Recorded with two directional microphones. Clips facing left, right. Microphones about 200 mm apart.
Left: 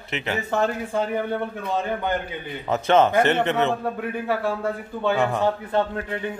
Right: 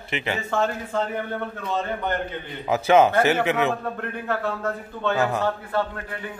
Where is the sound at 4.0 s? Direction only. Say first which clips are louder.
Left 2 dB; 10° left (ahead or behind).